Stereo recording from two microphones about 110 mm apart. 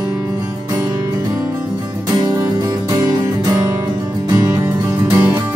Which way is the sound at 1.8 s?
40° right (ahead or behind).